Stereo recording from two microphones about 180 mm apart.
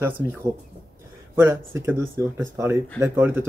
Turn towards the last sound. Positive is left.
turn(degrees=-15)  # may be behind; listen again after turning